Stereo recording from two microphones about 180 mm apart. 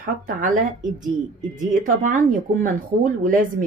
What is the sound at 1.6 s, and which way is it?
A woman's voice, 45° right (ahead or behind).